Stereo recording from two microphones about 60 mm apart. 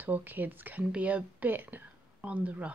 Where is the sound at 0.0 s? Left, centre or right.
Right.